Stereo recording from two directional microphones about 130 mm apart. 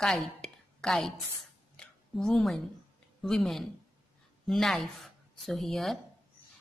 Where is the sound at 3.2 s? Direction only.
Centre (ahead or behind).